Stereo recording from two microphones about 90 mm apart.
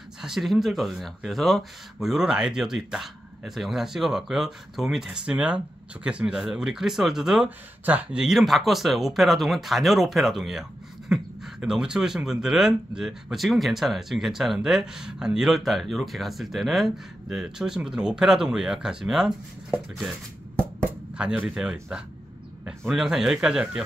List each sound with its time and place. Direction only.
0.2 s speech: 5° right (ahead or behind)
7.4 s speech: 15° right (ahead or behind)
8.2 s speech: centre (ahead or behind)
21.1 s speech: 10° right (ahead or behind)